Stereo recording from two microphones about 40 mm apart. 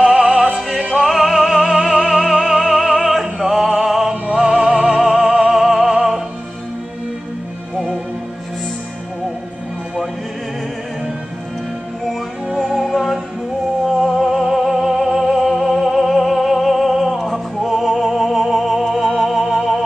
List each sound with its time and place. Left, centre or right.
0.0 s opera: centre
0.9 s music: centre
2.9 s opera: centre
4.4 s music: centre
12.5 s music: centre